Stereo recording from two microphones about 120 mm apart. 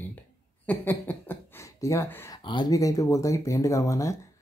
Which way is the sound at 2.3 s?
40° left (ahead or behind).